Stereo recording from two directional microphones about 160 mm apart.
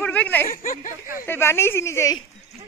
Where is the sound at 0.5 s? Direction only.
55° left (ahead or behind).